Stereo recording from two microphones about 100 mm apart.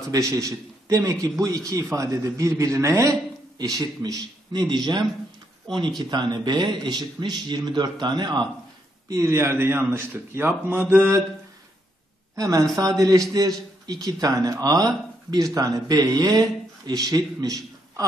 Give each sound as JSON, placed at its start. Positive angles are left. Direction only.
{"t": 0.1, "sound": "a man's voice", "side_deg": -35}
{"t": 9.1, "sound": "speech", "side_deg": -30}
{"t": 12.4, "sound": "a man's voice", "side_deg": -35}